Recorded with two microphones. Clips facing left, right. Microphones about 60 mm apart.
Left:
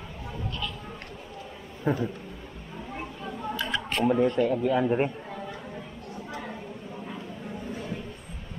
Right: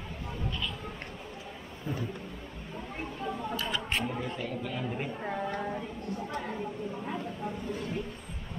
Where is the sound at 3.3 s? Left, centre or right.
Centre.